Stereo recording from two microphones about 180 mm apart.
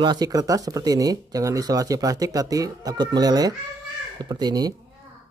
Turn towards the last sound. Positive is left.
turn(degrees=-20)  # may be behind; listen again after turning